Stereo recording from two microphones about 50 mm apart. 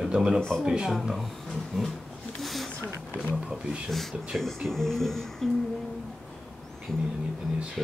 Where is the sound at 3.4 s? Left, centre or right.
Centre.